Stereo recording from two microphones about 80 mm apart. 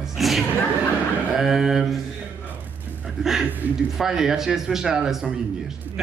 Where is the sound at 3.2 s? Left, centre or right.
Centre.